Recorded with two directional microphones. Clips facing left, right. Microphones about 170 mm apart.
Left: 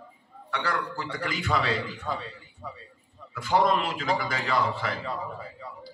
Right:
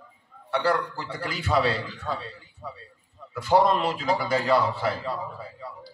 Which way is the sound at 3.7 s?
40° right (ahead or behind).